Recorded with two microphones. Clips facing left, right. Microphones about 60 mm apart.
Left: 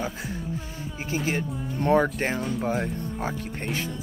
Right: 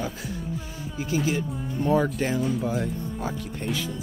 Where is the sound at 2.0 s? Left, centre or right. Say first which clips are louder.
Right 1 dB; left.